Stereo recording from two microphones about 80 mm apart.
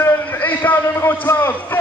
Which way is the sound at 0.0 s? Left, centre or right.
Left.